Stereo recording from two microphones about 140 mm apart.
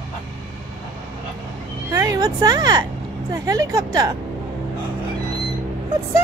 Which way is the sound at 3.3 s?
25° right (ahead or behind).